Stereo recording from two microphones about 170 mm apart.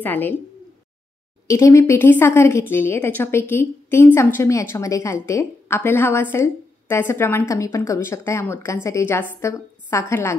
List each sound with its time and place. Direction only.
0.0 s a woman's voice: 10° left (ahead or behind)
1.5 s a woman's voice: 15° left (ahead or behind)